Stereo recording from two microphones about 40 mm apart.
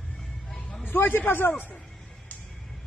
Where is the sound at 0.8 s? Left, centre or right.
Left.